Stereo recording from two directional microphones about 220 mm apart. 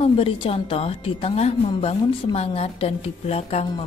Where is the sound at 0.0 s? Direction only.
25° left (ahead or behind).